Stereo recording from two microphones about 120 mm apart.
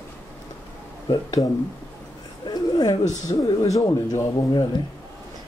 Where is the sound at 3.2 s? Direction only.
30° left (ahead or behind).